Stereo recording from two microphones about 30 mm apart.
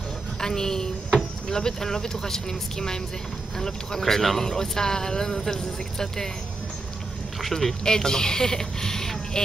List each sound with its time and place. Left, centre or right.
0.4 s a woman's voice: left
4.0 s speech: centre
7.3 s speech: centre
7.8 s speech: left